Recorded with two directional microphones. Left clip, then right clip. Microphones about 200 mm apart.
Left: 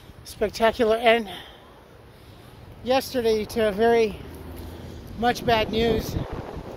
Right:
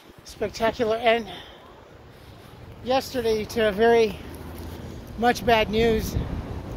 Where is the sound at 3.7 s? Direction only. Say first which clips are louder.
Right 1 dB; 20° left (ahead or behind).